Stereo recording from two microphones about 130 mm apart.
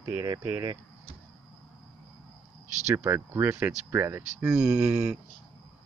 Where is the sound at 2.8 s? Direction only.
20° right (ahead or behind).